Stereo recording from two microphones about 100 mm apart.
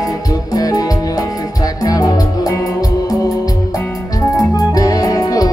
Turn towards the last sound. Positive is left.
turn(degrees=40)  # may be behind; listen again after turning